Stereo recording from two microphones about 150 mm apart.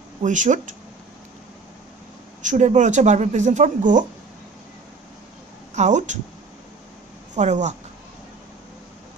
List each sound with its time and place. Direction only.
0.2 s speech: 55° right (ahead or behind)
2.4 s speech: 55° right (ahead or behind)
5.8 s speech: 55° right (ahead or behind)
7.3 s speech: 50° right (ahead or behind)